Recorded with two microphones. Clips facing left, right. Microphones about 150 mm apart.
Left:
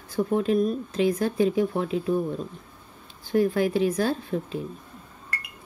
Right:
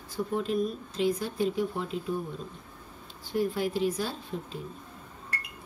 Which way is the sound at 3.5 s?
55° left (ahead or behind).